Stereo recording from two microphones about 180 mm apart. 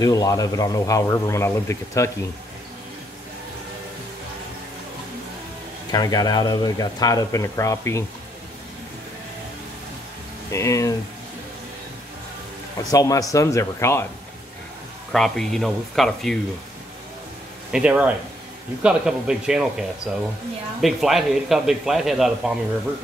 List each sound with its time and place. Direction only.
0.0 s speech: 20° left (ahead or behind)
5.9 s speech: 20° left (ahead or behind)
10.5 s speech: 15° left (ahead or behind)
12.7 s speech: 20° left (ahead or behind)
15.1 s a man's voice: centre (ahead or behind)
17.6 s a man's voice: 5° right (ahead or behind)